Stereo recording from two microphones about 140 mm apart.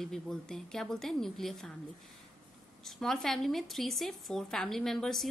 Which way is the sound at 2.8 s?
Centre (ahead or behind).